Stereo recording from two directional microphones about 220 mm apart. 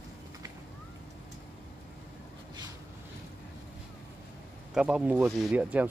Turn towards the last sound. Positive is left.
turn(degrees=-5)  # may be behind; listen again after turning